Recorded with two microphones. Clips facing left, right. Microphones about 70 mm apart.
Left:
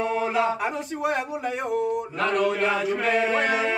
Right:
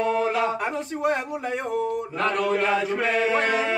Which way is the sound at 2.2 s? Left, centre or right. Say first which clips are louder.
Even; centre.